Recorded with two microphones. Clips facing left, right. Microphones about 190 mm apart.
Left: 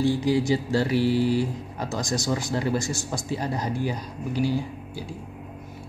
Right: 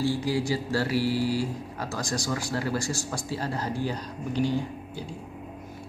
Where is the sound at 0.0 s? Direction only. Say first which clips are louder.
Left 4 dB; 20° left (ahead or behind).